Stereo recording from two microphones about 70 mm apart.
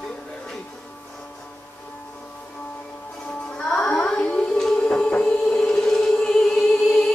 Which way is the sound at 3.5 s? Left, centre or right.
Centre.